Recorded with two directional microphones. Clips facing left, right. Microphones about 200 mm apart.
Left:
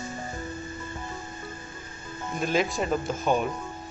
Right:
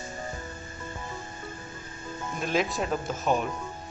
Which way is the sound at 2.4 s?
Centre (ahead or behind).